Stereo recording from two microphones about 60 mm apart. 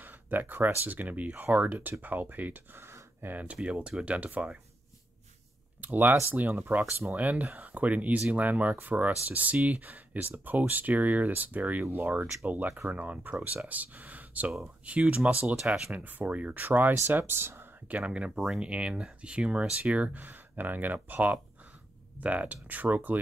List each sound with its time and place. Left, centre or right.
0.0 s a sound: right
0.8 s speech: right
3.6 s speech: centre
5.8 s speech: right
7.2 s speech: right
15.5 s speech: centre
15.8 s speech: right
17.9 s speech: right